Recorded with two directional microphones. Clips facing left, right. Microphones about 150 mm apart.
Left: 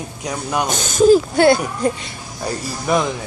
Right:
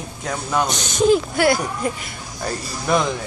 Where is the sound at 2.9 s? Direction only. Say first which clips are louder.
Left 1 dB; 5° left (ahead or behind).